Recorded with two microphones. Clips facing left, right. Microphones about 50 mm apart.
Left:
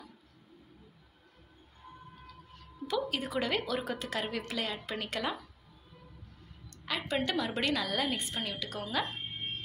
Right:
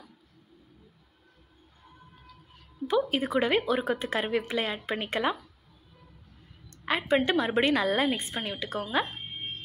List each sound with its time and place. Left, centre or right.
2.9 s speech: right
6.7 s a woman's voice: right